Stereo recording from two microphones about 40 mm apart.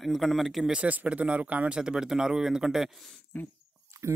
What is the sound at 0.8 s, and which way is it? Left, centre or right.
Speech, right.